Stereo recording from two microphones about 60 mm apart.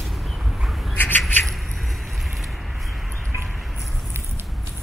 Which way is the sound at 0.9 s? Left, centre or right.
Left.